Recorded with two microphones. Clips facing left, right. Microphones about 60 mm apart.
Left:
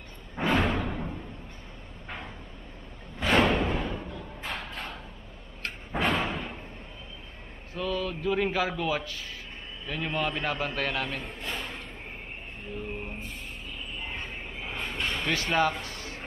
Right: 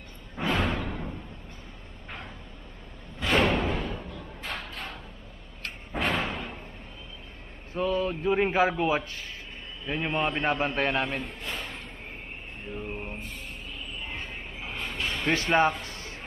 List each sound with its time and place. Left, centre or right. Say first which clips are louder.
0.5 s music: left 2 dB; centre
0.7 s music: left 2 dB; left
3.3 s music: left 1 dB; centre
4.0 s thump: left 1 dB; centre
5.9 s slam: left 1 dB; centre
7.7 s a man's voice: right 4 dB; right
11.1 s a sound: right 1 dB; centre
12.8 s mantra: right 1 dB; centre
14.1 s vehicle: even; centre
15.4 s a man's voice: right 3 dB; right
15.8 s a sound: left 1 dB; right